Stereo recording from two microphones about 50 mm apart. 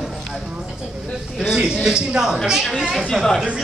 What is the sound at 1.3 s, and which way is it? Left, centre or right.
Speech, centre.